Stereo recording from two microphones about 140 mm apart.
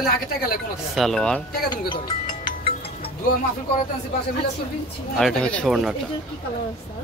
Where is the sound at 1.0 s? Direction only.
5° left (ahead or behind).